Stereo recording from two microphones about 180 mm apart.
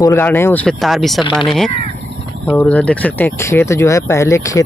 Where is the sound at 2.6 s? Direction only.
5° left (ahead or behind).